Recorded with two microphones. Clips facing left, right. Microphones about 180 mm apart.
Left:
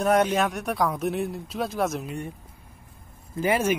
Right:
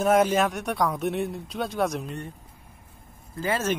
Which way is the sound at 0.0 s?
Centre (ahead or behind).